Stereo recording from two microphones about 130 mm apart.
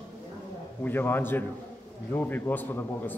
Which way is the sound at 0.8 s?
15° left (ahead or behind).